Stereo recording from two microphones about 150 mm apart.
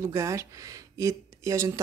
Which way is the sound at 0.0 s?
20° right (ahead or behind).